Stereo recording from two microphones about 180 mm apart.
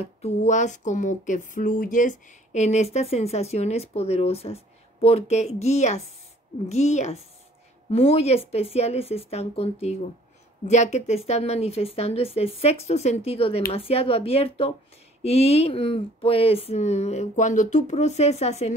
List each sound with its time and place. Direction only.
0.0 s speech: 40° left (ahead or behind)